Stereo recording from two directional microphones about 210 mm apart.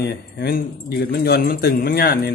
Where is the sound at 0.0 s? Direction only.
50° left (ahead or behind).